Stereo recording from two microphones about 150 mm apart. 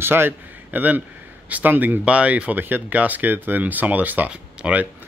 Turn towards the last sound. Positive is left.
turn(degrees=-10)  # may be behind; listen again after turning